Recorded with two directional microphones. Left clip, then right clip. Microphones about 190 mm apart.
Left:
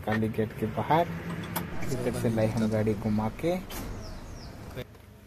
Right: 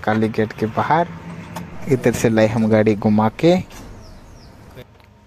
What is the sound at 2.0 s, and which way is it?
Speech, 55° right (ahead or behind).